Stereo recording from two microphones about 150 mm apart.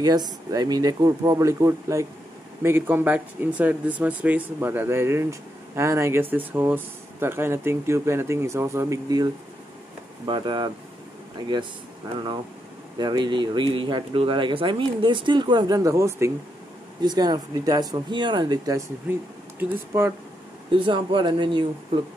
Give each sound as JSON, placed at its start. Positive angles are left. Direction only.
{"t": 0.0, "sound": "speech", "side_deg": -25}
{"t": 13.0, "sound": "speech", "side_deg": -30}
{"t": 20.7, "sound": "speech", "side_deg": -35}